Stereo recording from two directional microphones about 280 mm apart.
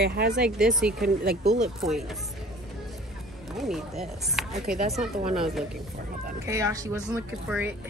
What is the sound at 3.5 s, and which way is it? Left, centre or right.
Speech, centre.